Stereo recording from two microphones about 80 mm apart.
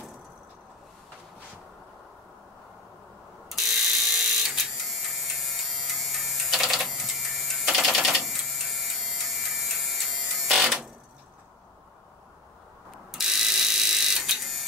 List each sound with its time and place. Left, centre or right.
3.4 s ratchet: centre
13.1 s mechanisms: centre